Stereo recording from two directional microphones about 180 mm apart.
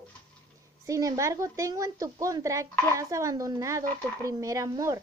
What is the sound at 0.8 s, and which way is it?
A woman's voice, 20° right (ahead or behind).